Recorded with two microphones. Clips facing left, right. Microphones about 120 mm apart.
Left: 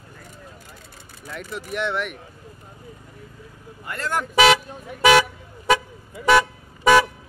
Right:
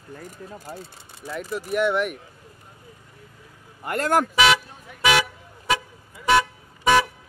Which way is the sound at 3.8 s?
50° right (ahead or behind).